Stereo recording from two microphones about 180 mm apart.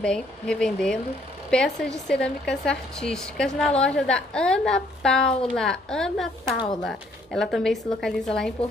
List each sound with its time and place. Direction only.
0.0 s a woman's voice: 5° left (ahead or behind)